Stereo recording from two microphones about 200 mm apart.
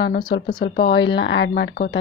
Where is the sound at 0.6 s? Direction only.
55° left (ahead or behind).